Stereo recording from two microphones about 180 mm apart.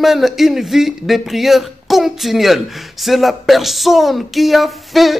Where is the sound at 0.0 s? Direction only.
Centre (ahead or behind).